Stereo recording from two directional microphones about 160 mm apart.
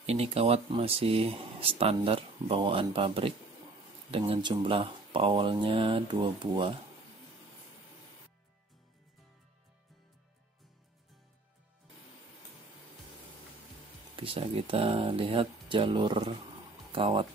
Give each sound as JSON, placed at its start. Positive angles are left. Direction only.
{"t": 0.0, "sound": "speech", "side_deg": -40}
{"t": 14.1, "sound": "speech", "side_deg": -35}